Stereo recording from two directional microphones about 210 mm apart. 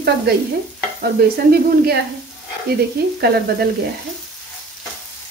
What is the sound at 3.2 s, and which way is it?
Speech, 50° right (ahead or behind).